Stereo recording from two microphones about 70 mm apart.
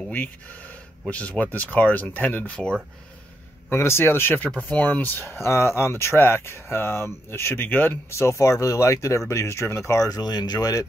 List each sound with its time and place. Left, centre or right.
1.1 s speech: centre
3.7 s speech: left
4.6 s speech: left
5.2 s speech: left
8.1 s speech: left